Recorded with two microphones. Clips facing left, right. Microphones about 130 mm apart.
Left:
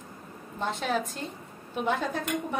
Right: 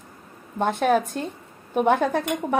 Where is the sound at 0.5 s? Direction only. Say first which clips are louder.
Right 9 dB; 55° right (ahead or behind).